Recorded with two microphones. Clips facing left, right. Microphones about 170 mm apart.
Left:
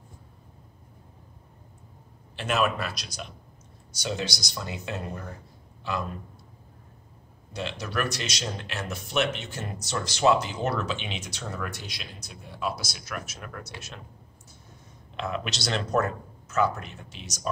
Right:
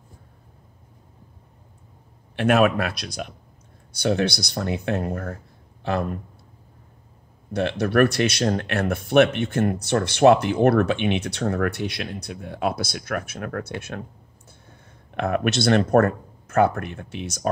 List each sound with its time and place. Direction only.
2.3 s speech: 60° right (ahead or behind)
7.5 s speech: 60° right (ahead or behind)